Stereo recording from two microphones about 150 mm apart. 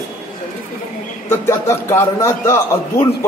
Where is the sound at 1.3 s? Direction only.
15° left (ahead or behind).